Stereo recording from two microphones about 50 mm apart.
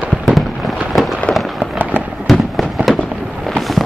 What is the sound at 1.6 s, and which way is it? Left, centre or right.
Fireworks, right.